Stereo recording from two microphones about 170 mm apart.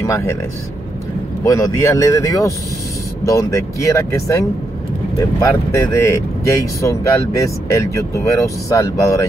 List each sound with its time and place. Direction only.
0.0 s speech: 15° left (ahead or behind)
1.4 s speech: 20° left (ahead or behind)